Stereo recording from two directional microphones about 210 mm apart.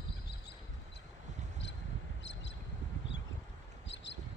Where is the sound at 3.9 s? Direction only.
60° left (ahead or behind).